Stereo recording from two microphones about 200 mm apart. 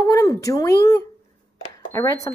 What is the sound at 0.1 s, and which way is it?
A woman's voice, 15° left (ahead or behind).